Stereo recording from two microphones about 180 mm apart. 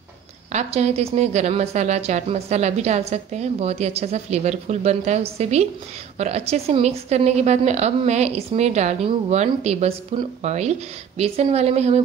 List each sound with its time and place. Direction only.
0.5 s a woman's voice: 40° right (ahead or behind)